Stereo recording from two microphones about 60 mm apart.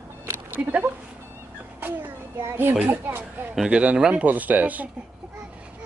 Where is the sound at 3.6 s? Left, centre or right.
Centre.